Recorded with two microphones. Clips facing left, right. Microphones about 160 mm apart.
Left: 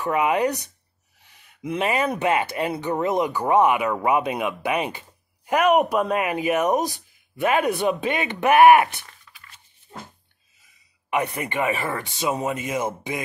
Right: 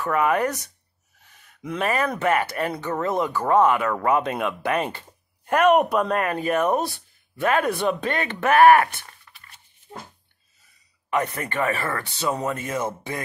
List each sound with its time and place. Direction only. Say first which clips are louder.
0.0 s speech: left 1 dB; 15° left (ahead or behind)
1.6 s speech: left 1 dB; 15° left (ahead or behind)
11.1 s speech: even; 15° left (ahead or behind)